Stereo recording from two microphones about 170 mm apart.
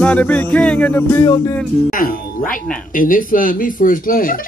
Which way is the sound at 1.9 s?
55° left (ahead or behind).